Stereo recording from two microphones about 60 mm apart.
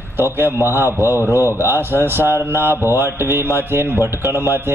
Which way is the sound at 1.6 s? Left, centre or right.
Right.